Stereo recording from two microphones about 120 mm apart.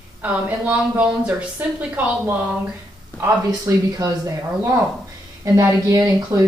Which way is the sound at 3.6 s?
30° right (ahead or behind).